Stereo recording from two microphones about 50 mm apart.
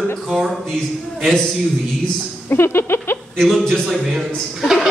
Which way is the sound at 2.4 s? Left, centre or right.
Left.